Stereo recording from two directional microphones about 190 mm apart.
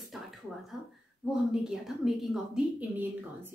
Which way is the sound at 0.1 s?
Centre (ahead or behind).